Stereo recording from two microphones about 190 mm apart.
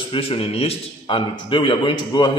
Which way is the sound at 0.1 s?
30° left (ahead or behind).